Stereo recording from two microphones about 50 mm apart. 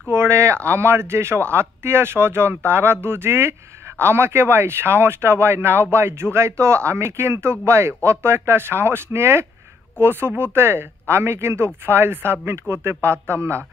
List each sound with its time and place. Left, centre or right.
0.1 s speech: right